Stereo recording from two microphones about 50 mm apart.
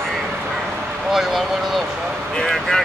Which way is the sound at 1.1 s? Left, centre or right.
Centre.